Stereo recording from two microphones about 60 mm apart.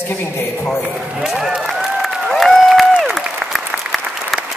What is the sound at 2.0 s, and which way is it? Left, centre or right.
Applause, centre.